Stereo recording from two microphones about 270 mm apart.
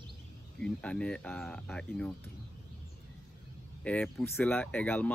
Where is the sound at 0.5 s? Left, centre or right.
Centre.